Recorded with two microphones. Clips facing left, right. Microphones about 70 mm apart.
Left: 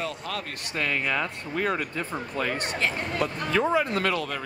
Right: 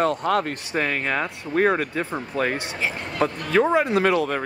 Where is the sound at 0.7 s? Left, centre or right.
Right.